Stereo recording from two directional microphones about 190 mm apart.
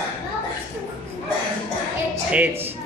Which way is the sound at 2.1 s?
10° right (ahead or behind).